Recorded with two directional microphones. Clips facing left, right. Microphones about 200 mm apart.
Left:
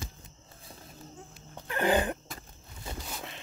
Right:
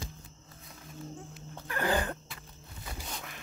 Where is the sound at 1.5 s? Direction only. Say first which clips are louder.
Left 4 dB; 20° left (ahead or behind).